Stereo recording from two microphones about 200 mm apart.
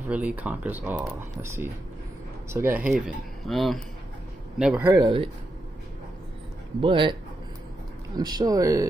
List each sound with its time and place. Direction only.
0.1 s speech: 5° right (ahead or behind)
6.8 s a man's voice: 25° right (ahead or behind)
8.2 s speech: 20° right (ahead or behind)